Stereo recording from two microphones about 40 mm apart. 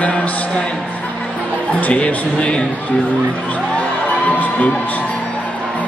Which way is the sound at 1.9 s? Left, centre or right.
Left.